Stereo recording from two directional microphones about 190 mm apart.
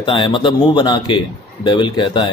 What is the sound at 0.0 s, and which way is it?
Speech, 25° left (ahead or behind).